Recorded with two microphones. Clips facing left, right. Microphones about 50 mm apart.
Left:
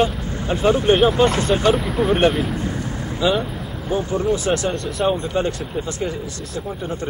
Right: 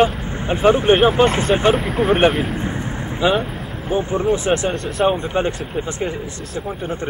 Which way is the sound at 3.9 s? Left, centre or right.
Right.